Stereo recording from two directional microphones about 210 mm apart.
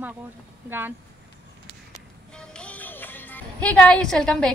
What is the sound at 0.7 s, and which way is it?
Speech, 10° right (ahead or behind).